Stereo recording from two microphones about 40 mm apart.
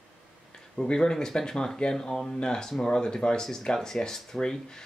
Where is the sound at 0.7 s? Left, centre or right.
Left.